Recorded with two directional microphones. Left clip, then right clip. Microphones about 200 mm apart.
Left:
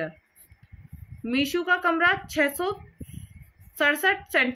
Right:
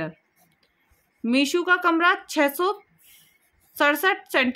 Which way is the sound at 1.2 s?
50° right (ahead or behind).